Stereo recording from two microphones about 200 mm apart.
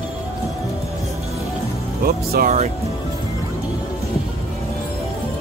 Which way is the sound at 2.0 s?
50° right (ahead or behind).